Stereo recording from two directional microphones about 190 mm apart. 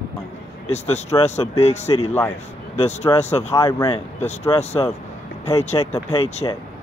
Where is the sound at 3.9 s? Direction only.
35° left (ahead or behind).